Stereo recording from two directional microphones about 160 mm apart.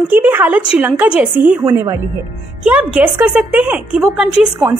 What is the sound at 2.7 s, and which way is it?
A woman's voice, 10° right (ahead or behind).